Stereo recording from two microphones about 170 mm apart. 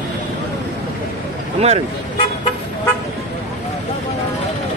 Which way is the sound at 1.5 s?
40° right (ahead or behind).